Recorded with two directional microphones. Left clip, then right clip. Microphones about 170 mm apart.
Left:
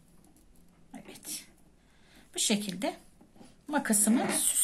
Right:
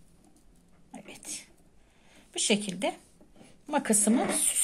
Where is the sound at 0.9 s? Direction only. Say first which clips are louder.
Right 2 dB; 20° right (ahead or behind).